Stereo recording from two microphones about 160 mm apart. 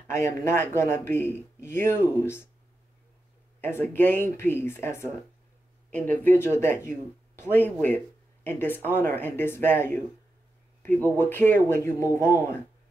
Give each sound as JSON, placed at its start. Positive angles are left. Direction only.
{"t": 0.1, "sound": "speech", "side_deg": 15}
{"t": 3.6, "sound": "speech", "side_deg": 15}
{"t": 11.1, "sound": "speech", "side_deg": 15}